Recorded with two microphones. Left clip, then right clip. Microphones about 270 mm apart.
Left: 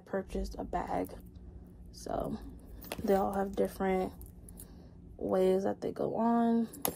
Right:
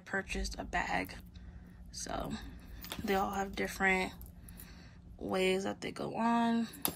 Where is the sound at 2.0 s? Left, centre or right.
Centre.